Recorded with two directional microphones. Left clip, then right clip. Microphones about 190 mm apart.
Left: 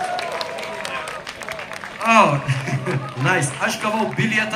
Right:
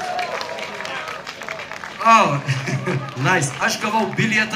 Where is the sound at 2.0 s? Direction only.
15° right (ahead or behind).